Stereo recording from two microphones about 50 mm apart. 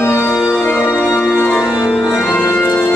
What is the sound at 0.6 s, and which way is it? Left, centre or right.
Music, left.